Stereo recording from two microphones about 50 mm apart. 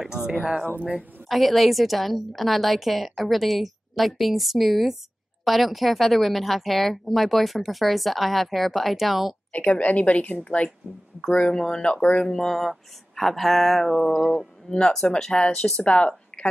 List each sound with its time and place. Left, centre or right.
0.0 s a sound: centre
1.3 s speech: centre
9.7 s a woman's voice: left
11.3 s speech: centre
11.9 s a woman's voice: left
12.3 s speech: centre; by 16.4 s left